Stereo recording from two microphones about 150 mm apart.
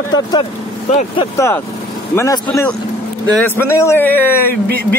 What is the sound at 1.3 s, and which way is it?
A man's voice, 20° left (ahead or behind).